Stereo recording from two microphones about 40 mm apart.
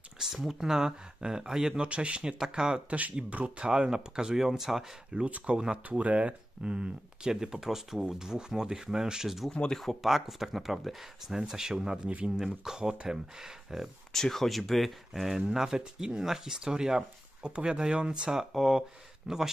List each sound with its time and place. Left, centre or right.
0.2 s speech: centre
1.9 s speech: right
2.3 s speech: centre
2.9 s speech: right; by 4.8 s centre
5.1 s speech: right
5.9 s speech: right; by 9.5 s centre
9.5 s speech: centre
10.0 s speech: centre; by 13.2 s right
13.4 s speech: centre
14.1 s speech: centre; by 18.3 s right
18.5 s speech: centre